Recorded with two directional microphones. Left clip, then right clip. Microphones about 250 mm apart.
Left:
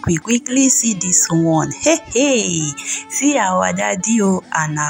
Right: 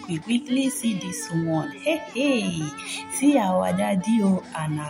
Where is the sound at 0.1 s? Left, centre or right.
Left.